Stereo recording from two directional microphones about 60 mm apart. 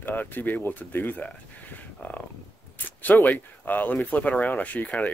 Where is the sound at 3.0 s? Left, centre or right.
Left.